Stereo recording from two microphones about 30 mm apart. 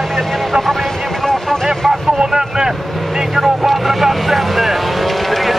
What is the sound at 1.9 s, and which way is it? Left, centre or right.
Vehicle, centre.